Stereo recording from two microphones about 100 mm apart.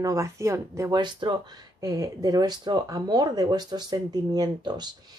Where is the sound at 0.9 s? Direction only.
50° right (ahead or behind).